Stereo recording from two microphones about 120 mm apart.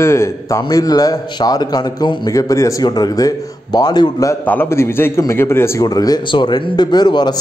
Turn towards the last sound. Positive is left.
turn(degrees=35)  # may be behind; listen again after turning